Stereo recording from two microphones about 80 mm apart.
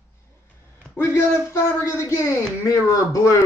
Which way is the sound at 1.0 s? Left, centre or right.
Left.